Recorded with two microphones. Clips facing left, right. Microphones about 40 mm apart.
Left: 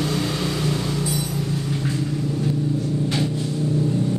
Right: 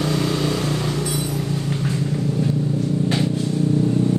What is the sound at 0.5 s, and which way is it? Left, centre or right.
Vehicle, right.